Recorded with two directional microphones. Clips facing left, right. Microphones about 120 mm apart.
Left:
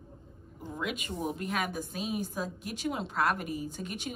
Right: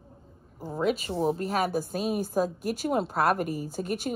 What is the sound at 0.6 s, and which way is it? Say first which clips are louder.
A woman's voice: right 9 dB; 35° right (ahead or behind).